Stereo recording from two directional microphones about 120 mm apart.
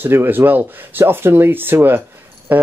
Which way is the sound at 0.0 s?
15° right (ahead or behind).